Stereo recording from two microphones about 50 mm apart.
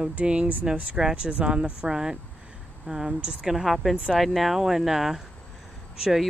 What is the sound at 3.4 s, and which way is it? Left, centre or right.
Speech, centre.